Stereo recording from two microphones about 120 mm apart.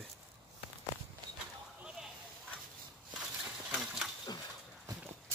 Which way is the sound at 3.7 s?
5° right (ahead or behind).